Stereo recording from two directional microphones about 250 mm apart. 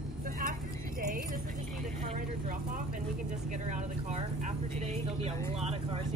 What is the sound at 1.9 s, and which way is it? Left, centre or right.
Vehicle, right.